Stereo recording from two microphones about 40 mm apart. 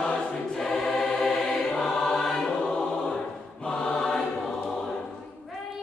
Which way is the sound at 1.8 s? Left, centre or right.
Centre.